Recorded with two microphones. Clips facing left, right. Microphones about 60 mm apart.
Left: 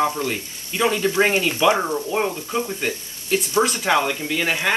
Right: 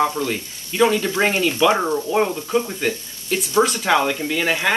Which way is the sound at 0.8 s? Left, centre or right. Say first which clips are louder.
Right 1 dB; centre.